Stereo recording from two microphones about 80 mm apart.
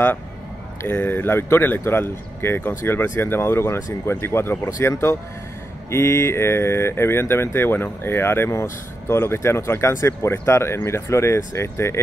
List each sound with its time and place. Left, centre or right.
0.8 s speech: left